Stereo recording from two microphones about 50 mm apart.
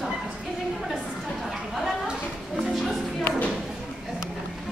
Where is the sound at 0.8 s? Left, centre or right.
Centre.